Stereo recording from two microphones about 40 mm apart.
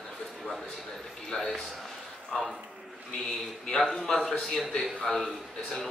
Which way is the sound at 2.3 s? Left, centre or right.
Centre.